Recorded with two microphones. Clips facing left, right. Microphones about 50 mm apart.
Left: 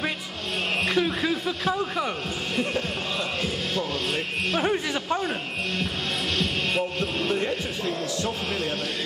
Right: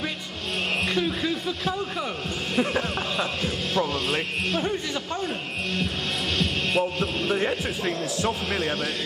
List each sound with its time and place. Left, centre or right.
0.8 s a man's voice: centre
2.5 s a man's voice: centre
4.6 s a man's voice: centre
6.3 s music: centre
7.3 s a man's voice: centre